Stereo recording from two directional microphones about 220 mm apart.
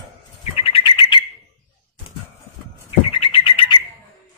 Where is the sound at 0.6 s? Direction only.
25° left (ahead or behind).